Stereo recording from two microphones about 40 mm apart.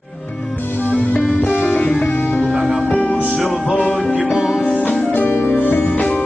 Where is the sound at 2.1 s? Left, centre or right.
Left.